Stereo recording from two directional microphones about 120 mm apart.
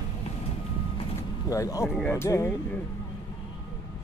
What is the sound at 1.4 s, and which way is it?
Speech, 25° left (ahead or behind).